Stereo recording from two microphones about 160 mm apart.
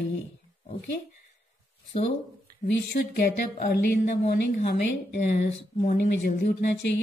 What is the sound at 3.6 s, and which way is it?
Speech, 75° left (ahead or behind).